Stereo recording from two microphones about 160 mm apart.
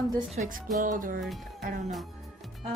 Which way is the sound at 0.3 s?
50° right (ahead or behind).